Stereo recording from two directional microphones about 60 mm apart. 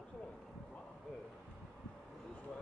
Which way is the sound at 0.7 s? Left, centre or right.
Centre.